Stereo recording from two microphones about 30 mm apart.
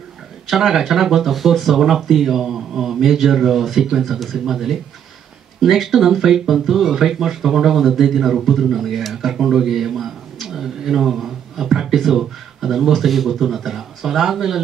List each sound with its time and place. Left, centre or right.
0.5 s a man's voice: centre
1.7 s a man's voice: centre
11.1 s a sound: centre
11.9 s speech: centre